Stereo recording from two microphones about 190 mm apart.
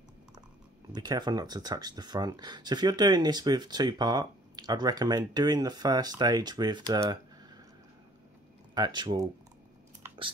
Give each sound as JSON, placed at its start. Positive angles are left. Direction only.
{"t": 0.9, "sound": "speech", "side_deg": -20}
{"t": 8.7, "sound": "speech", "side_deg": -20}